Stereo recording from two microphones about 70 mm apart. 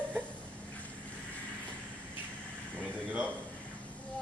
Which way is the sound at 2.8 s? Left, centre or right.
Right.